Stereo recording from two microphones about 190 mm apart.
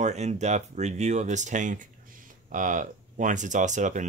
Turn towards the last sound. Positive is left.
turn(degrees=-40)  # may be behind; listen again after turning